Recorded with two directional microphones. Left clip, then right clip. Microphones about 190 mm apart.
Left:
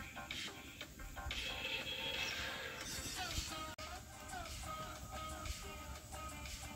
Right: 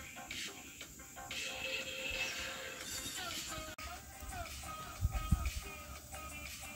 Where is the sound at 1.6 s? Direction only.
30° right (ahead or behind).